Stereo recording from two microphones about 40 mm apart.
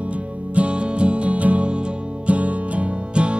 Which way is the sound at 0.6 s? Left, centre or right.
Right.